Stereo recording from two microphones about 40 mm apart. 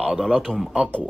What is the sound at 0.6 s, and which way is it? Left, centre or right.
Speech, centre.